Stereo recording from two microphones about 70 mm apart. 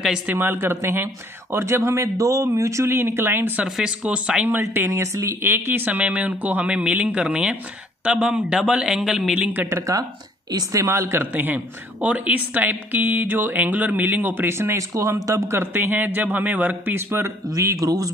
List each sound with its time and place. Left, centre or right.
0.3 s a man's voice: right
3.6 s speech: centre
4.0 s a man's voice: centre
4.8 s speech: right
5.5 s a man's voice: right; by 9.4 s centre
10.7 s speech: right
11.0 s a man's voice: right
15.0 s a man's voice: right
17.6 s speech: right